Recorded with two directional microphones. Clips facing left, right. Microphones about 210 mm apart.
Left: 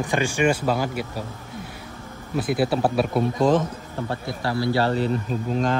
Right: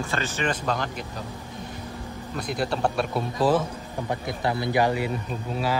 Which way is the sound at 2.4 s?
5° left (ahead or behind).